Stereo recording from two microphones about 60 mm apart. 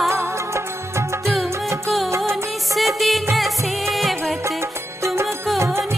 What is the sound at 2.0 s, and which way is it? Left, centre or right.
Music, right.